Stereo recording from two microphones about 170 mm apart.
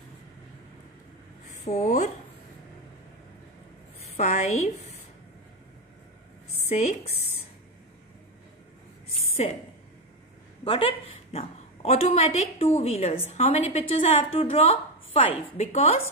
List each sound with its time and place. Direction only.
1.6 s speech: 45° left (ahead or behind)
4.0 s a woman's voice: 45° left (ahead or behind)
9.4 s a woman's voice: 40° left (ahead or behind)
10.6 s a woman's voice: 35° left (ahead or behind)